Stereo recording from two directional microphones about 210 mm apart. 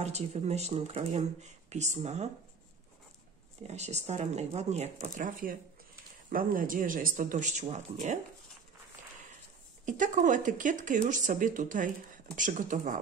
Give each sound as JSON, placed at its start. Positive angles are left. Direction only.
{"t": 0.0, "sound": "speech", "side_deg": -30}
{"t": 3.6, "sound": "speech", "side_deg": -30}
{"t": 9.8, "sound": "speech", "side_deg": -35}